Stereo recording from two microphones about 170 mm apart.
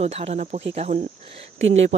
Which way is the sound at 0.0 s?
40° right (ahead or behind).